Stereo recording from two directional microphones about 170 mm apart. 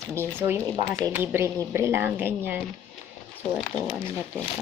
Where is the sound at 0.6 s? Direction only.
10° left (ahead or behind).